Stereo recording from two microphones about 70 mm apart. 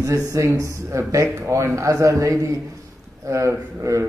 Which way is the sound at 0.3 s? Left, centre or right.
Right.